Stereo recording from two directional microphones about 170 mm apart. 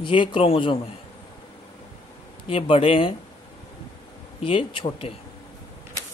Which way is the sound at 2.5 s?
35° left (ahead or behind).